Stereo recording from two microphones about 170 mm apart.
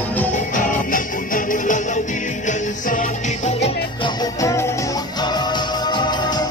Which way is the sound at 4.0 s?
20° left (ahead or behind).